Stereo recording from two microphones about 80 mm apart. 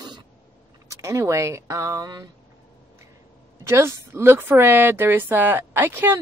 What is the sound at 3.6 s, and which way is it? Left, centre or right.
Speech, right.